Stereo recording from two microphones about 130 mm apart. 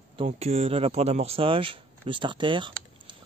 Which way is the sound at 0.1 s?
50° right (ahead or behind).